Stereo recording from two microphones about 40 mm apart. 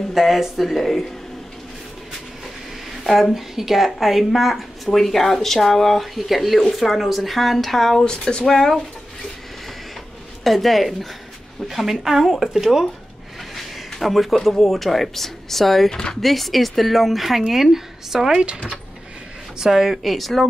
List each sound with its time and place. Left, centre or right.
0.1 s speech: centre
3.0 s a sound: centre
3.3 s speech: centre
8.0 s speech: left
8.5 s speech: centre
10.4 s speech: centre
13.6 s a sound: centre
14.6 s speech: centre
15.9 s speech: centre
16.2 s speech: centre
19.6 s speech: centre